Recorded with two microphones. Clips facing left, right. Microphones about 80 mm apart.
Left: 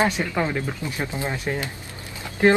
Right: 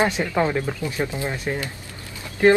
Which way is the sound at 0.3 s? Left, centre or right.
Centre.